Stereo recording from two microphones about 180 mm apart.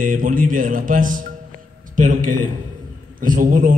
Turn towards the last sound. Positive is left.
turn(degrees=-50)  # may be behind; listen again after turning